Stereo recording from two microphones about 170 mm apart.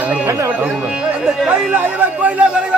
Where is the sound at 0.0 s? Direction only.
10° right (ahead or behind).